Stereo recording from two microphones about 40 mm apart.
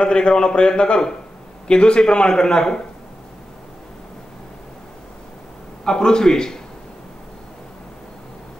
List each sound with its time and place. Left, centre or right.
0.0 s a man's voice: left
5.9 s a man's voice: centre